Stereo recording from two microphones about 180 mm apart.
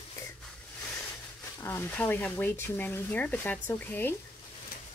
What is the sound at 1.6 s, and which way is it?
Speech, 10° left (ahead or behind).